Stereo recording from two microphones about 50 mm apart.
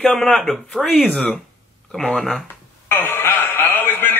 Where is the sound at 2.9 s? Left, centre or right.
Left.